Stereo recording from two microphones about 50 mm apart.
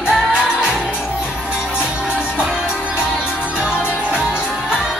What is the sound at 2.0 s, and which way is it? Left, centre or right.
Music, centre.